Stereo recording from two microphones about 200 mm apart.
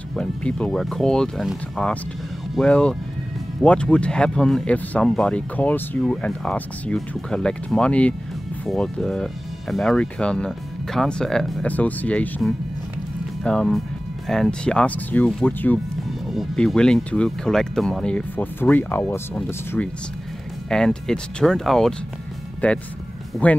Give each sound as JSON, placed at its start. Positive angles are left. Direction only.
{"t": 0.1, "sound": "speech", "side_deg": 5}